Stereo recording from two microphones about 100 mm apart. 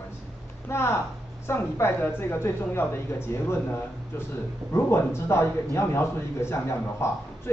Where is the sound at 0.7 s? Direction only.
25° left (ahead or behind).